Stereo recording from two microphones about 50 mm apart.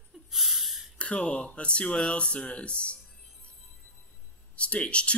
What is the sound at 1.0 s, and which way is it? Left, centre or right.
Speech, left.